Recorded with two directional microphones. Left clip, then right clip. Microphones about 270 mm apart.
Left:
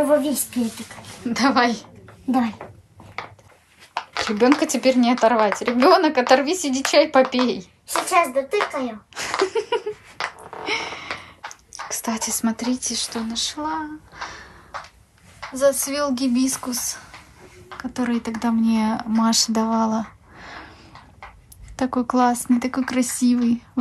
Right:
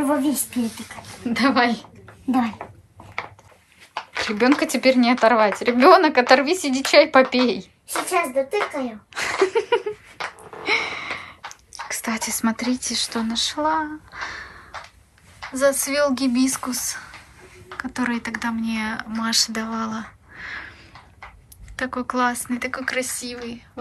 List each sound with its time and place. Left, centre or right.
0.3 s speech: centre
3.2 s a sound: centre
4.4 s speech: centre
21.7 s speech: left